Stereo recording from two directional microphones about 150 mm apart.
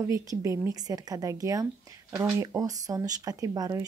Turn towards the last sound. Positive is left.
turn(degrees=-25)  # may be behind; listen again after turning